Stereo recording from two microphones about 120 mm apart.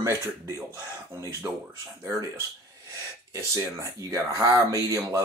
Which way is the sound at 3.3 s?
25° right (ahead or behind).